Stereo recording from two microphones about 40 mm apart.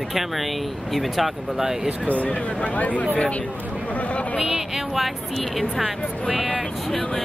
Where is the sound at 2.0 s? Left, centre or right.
Left.